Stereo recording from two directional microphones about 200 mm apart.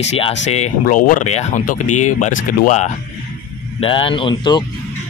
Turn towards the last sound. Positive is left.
turn(degrees=25)  # may be behind; listen again after turning